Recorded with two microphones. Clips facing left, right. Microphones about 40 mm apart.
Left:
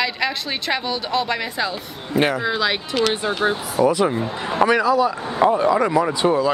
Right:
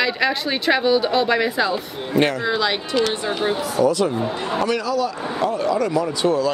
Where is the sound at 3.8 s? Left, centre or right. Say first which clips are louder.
Left 1 dB; centre.